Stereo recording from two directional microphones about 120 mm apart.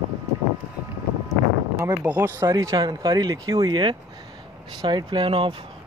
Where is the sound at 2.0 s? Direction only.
15° right (ahead or behind).